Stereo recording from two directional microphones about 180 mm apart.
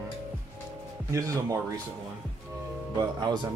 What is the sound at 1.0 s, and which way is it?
Speech, 15° right (ahead or behind).